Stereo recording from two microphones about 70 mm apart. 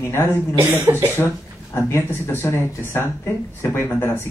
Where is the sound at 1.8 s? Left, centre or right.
Left.